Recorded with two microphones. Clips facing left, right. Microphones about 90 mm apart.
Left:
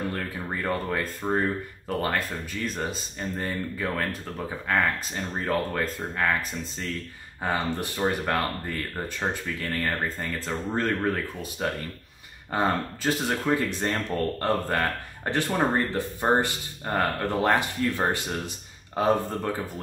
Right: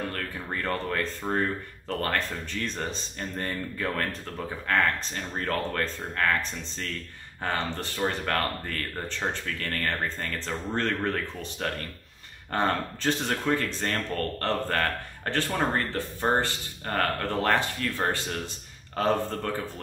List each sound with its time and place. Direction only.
0.1 s speech: 15° left (ahead or behind)